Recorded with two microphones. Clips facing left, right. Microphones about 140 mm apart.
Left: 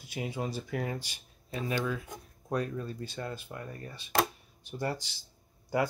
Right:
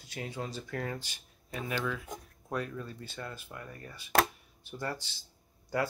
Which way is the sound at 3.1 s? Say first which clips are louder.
Left 4 dB; 25° left (ahead or behind).